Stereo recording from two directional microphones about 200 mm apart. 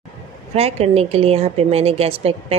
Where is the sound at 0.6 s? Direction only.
30° right (ahead or behind).